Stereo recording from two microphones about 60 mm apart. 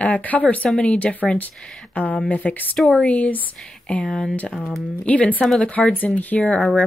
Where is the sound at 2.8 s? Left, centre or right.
Centre.